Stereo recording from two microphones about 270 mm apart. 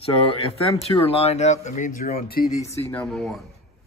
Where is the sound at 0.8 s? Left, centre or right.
Left.